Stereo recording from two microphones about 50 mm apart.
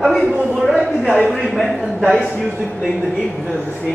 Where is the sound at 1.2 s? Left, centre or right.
Centre.